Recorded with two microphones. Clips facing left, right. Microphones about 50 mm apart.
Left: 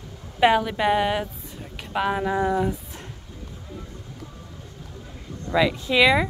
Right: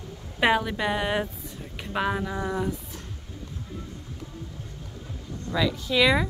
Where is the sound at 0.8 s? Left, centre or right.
Centre.